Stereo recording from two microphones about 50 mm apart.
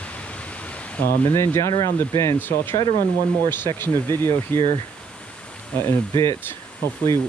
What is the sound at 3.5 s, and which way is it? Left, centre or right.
Speech, left.